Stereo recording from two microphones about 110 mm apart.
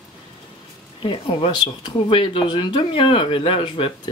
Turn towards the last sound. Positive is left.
turn(degrees=50)  # may be behind; listen again after turning